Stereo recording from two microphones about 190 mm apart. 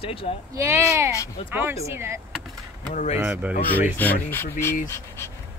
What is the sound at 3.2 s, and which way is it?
Speech, 10° right (ahead or behind).